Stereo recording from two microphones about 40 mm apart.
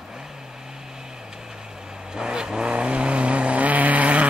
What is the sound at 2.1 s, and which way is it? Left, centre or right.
Vehicle, centre.